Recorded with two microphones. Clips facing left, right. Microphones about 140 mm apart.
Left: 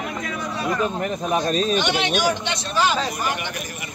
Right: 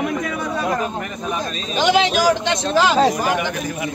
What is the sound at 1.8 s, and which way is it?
Speech, 90° right.